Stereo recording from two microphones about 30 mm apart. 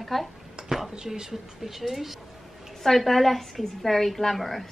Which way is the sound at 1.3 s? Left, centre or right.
Centre.